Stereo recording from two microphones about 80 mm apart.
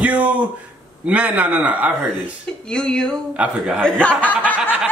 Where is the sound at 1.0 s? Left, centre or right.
Centre.